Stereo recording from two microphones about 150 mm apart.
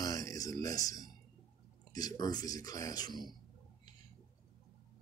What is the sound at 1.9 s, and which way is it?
Speech, 25° left (ahead or behind).